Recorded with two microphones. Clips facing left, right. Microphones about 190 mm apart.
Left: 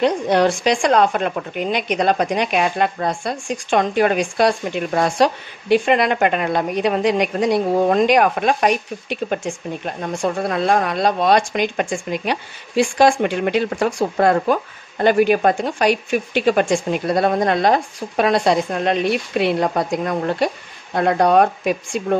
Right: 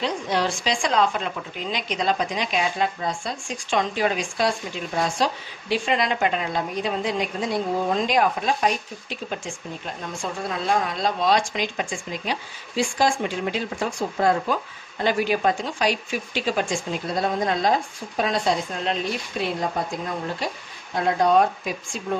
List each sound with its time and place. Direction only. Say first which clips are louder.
0.0 s a woman's voice: left 8 dB; 55° left (ahead or behind)